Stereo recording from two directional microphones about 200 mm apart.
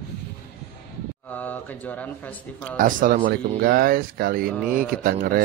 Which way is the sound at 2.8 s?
45° right (ahead or behind).